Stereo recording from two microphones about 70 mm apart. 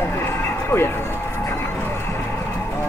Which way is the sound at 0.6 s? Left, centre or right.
Left.